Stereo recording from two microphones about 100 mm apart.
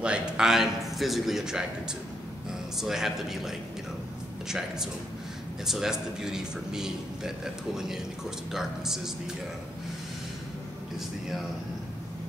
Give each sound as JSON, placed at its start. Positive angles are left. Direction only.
{"t": 0.0, "sound": "a man's voice", "side_deg": -10}
{"t": 2.8, "sound": "a man's voice", "side_deg": -5}